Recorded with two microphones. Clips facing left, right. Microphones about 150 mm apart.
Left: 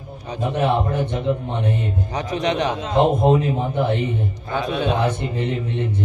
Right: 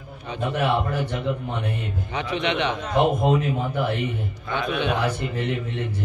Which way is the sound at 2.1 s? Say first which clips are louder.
Left 2 dB; 40° left (ahead or behind).